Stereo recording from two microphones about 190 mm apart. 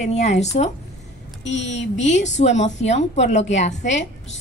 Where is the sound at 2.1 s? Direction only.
40° left (ahead or behind).